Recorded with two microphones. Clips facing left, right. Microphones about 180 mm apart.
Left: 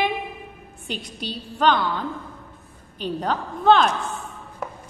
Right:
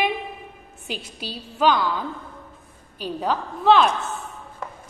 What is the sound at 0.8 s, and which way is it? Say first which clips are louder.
Speech: left 1 dB; 5° right (ahead or behind).